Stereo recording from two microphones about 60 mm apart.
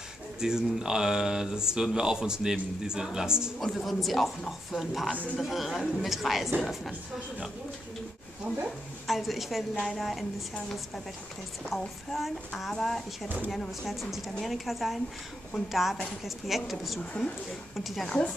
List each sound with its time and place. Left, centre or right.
0.4 s speech: centre
3.5 s speech: centre
5.1 s a man's voice: left
5.4 s speech: centre
9.0 s speech: centre
11.7 s speech: centre
17.0 s a man's voice: centre